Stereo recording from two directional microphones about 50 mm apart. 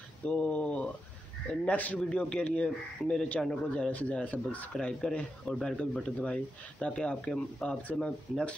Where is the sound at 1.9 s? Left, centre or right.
Centre.